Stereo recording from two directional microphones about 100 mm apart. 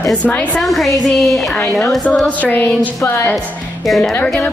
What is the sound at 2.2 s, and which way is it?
A woman's voice, 15° left (ahead or behind).